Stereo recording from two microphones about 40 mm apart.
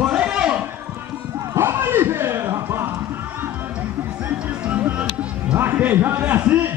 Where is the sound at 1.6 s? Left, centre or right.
Right.